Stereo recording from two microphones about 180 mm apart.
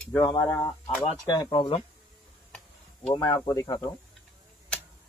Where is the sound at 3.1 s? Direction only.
25° left (ahead or behind).